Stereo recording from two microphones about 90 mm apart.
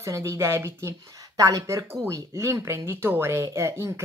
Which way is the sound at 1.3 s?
35° right (ahead or behind).